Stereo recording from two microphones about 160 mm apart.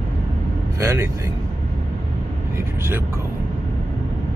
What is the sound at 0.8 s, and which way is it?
Speech, 15° right (ahead or behind).